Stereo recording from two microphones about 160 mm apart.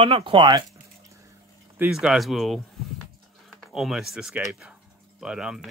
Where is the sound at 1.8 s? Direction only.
5° right (ahead or behind).